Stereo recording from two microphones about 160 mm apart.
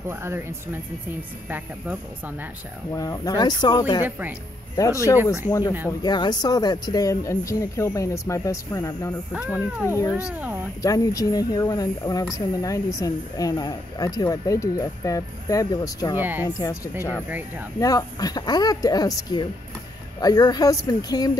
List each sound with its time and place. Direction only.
0.1 s speech: 15° right (ahead or behind)
2.9 s speech: 20° left (ahead or behind)
10.2 s speech: 10° right (ahead or behind)
10.8 s speech: 20° left (ahead or behind)
16.2 s speech: 10° right (ahead or behind)
16.4 s speech: 25° left (ahead or behind)